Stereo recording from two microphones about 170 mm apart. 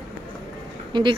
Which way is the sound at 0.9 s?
30° right (ahead or behind).